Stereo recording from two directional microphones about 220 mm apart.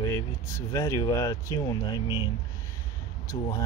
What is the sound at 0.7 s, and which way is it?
Speech, 15° left (ahead or behind).